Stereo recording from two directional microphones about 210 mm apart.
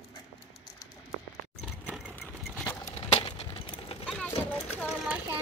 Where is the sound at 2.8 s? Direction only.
30° left (ahead or behind).